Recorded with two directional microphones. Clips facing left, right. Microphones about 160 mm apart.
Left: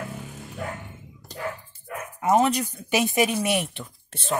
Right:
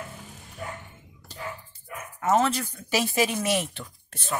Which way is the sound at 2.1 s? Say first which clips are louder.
Left 2 dB; 15° left (ahead or behind).